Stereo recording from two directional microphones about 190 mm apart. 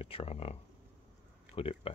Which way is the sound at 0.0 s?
30° left (ahead or behind).